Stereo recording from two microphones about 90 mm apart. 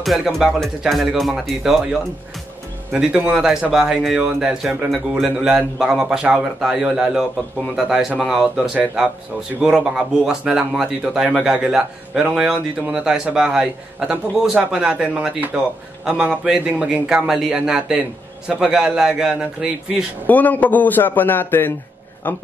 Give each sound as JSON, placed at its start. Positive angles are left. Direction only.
{"t": 0.0, "sound": "speech", "side_deg": 0}
{"t": 9.8, "sound": "speech", "side_deg": -5}
{"t": 20.2, "sound": "a man's voice", "side_deg": 20}